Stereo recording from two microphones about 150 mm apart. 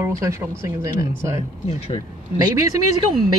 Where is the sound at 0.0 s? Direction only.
20° right (ahead or behind).